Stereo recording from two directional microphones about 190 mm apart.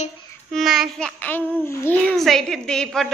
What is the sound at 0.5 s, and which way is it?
Speech, centre (ahead or behind).